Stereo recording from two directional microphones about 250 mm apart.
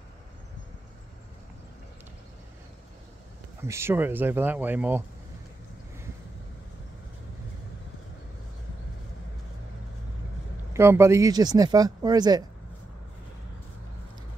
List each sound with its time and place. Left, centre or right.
3.6 s speech: centre
10.7 s speech: centre